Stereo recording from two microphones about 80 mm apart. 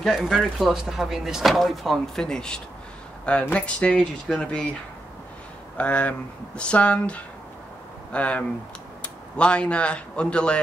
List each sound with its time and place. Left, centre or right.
0.0 s speech: centre
5.8 s speech: centre